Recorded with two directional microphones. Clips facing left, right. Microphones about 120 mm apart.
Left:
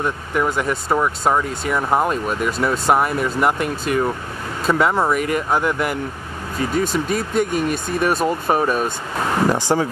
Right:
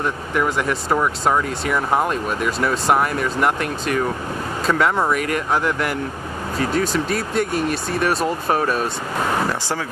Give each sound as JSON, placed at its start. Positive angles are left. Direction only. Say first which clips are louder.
{"t": 0.0, "sound": "speech", "louder": "left 1 dB", "side_deg": 0}
{"t": 9.5, "sound": "speech", "louder": "left 6 dB", "side_deg": 20}